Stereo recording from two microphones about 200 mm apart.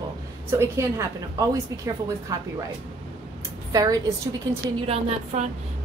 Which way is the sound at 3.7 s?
20° right (ahead or behind).